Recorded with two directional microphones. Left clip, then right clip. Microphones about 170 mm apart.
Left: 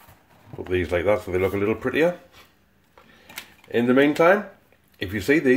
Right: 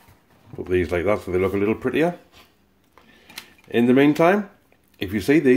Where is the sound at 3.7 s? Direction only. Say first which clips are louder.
Right 1 dB; 35° right (ahead or behind).